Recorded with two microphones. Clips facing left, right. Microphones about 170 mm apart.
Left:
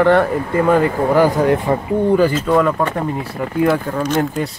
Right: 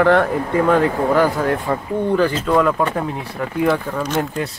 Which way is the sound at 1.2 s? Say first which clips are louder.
Left 4 dB; 15° left (ahead or behind).